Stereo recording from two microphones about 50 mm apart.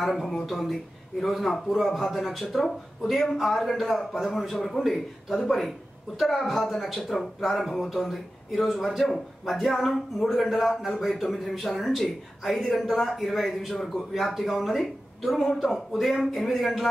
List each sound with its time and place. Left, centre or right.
0.0 s speech: centre